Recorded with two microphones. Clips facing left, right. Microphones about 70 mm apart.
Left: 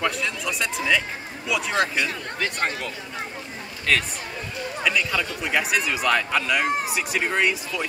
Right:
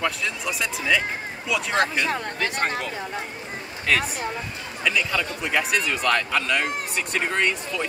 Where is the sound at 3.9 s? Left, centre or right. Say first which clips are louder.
Right 1 dB; centre.